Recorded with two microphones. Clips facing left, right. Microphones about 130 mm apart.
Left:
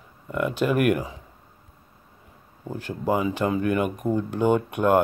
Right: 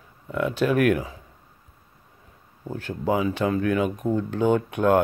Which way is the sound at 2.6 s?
10° left (ahead or behind).